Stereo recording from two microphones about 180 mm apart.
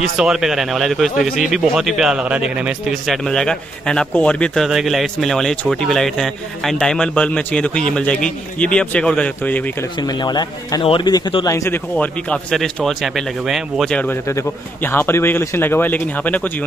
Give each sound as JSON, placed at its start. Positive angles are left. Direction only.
{"t": 0.0, "sound": "speech", "side_deg": -5}
{"t": 9.9, "sound": "a man's voice", "side_deg": 25}
{"t": 11.9, "sound": "speech", "side_deg": 5}